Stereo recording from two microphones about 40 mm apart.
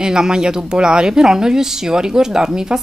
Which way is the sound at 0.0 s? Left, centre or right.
Centre.